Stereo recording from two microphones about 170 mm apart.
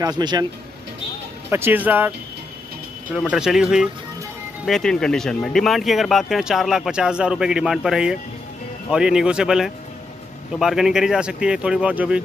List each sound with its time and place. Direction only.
0.0 s speech: 25° right (ahead or behind)
1.5 s speech: 10° right (ahead or behind)
3.2 s speech: 5° right (ahead or behind)